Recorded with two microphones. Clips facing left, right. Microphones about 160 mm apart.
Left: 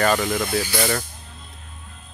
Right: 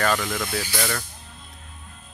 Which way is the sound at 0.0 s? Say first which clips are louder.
Left 4 dB; 15° left (ahead or behind).